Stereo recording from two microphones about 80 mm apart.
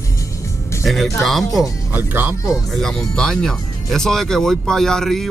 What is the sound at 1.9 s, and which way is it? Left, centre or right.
Speech, right.